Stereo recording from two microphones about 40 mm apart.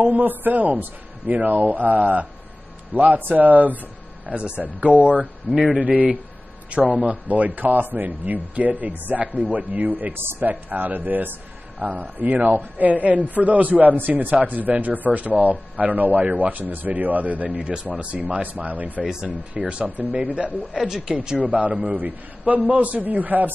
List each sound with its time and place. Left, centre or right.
0.0 s a man's voice: right
4.3 s speech: right
5.5 s speech: centre
6.7 s a man's voice: right
19.7 s speech: right
20.7 s speech: centre
21.1 s speech: right
21.4 s a man's voice: right